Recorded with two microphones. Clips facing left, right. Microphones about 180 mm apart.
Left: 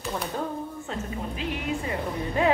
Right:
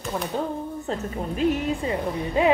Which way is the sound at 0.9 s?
45° right (ahead or behind).